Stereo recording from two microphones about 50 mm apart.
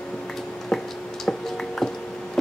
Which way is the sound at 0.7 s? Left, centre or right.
Centre.